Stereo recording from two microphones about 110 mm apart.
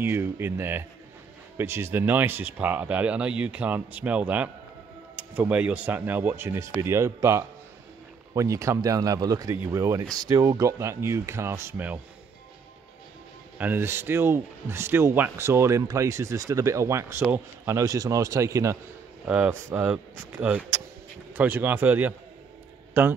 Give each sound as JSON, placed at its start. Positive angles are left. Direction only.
{"t": 0.0, "sound": "speech", "side_deg": -20}
{"t": 13.6, "sound": "speech", "side_deg": -20}
{"t": 19.2, "sound": "a man's voice", "side_deg": -10}